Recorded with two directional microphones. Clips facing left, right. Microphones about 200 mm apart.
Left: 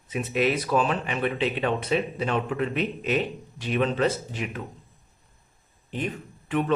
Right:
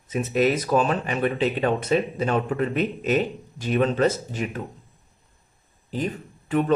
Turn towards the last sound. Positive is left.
turn(degrees=-40)  # may be behind; listen again after turning